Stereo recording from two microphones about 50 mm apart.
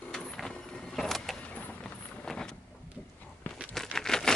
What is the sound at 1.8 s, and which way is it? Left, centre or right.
Vehicle, centre.